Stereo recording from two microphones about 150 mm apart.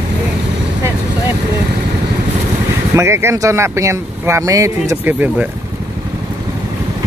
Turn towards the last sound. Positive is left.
turn(degrees=-10)  # may be behind; listen again after turning